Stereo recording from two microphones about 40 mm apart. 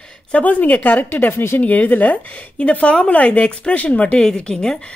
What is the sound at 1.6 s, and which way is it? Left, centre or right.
Speech, left.